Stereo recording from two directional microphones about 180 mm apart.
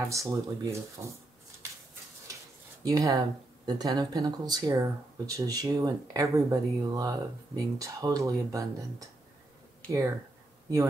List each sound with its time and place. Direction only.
0.0 s speech: 15° right (ahead or behind)
2.3 s a sound: 20° right (ahead or behind)
2.8 s speech: 20° right (ahead or behind)
9.8 s speech: 15° right (ahead or behind)